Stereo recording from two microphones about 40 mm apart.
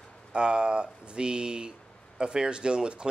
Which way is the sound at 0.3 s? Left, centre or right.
Right.